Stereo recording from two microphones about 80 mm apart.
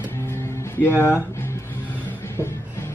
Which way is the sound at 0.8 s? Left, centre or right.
Left.